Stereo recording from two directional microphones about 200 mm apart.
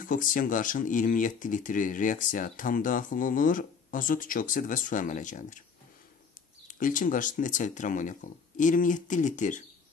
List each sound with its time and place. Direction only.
0.0 s speech: 40° left (ahead or behind)
6.7 s speech: 40° left (ahead or behind)